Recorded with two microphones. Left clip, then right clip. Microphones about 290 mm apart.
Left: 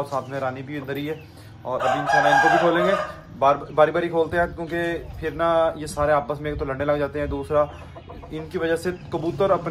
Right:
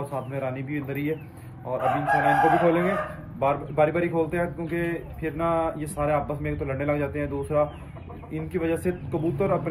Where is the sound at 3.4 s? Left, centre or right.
Centre.